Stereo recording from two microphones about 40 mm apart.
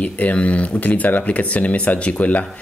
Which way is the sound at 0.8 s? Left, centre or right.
Left.